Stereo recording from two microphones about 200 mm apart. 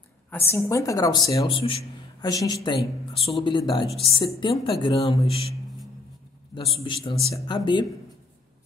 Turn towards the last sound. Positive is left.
turn(degrees=20)  # may be behind; listen again after turning